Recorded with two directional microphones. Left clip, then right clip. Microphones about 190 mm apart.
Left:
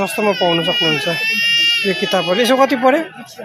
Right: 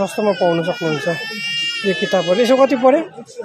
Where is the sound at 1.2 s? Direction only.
60° right (ahead or behind).